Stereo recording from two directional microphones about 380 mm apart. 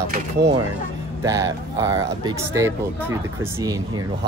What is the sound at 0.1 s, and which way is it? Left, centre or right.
Speech, right.